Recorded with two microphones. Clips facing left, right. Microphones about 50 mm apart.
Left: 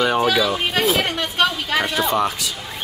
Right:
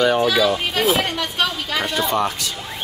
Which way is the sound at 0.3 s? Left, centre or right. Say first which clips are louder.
Right 1 dB; centre.